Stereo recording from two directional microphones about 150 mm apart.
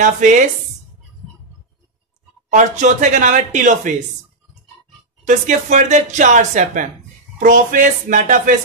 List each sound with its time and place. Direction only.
0.0 s speech: 55° right (ahead or behind)
2.5 s speech: 55° right (ahead or behind)
5.2 s speech: 55° right (ahead or behind)